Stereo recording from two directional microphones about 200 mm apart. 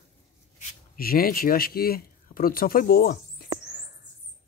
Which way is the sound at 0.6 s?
50° left (ahead or behind).